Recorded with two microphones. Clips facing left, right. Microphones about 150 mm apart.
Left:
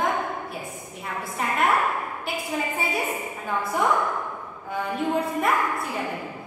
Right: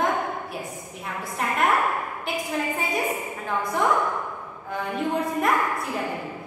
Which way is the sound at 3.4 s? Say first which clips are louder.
Even; 5° left (ahead or behind).